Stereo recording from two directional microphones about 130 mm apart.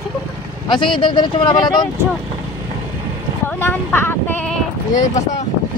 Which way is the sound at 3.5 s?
15° left (ahead or behind).